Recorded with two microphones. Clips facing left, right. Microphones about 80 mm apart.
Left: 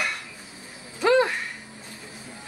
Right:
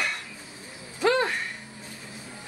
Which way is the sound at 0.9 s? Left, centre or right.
Centre.